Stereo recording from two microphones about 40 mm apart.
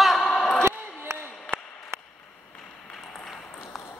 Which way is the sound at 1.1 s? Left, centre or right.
Right.